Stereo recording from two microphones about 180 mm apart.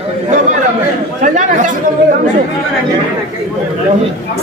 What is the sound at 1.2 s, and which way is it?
Speech, 45° right (ahead or behind).